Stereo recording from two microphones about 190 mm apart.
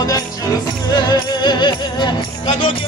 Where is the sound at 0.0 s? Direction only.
20° left (ahead or behind).